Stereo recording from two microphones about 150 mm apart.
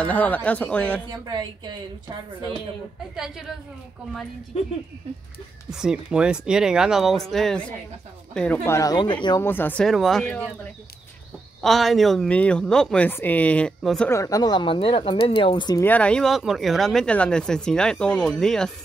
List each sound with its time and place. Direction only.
0.0 s a woman's voice: 10° left (ahead or behind)
1.1 s speech: 25° right (ahead or behind)
3.2 s speech: 5° right (ahead or behind)
5.7 s speech: 5° right (ahead or behind)
8.6 s speech: 20° left (ahead or behind)
9.4 s a woman's voice: 15° left (ahead or behind)
10.2 s a woman's voice: 10° left (ahead or behind)
11.6 s a woman's voice: centre (ahead or behind)
14.1 s speech: 25° left (ahead or behind)
15.8 s speech: 10° left (ahead or behind)